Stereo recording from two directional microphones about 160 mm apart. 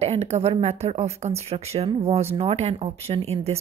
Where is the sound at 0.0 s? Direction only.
40° right (ahead or behind).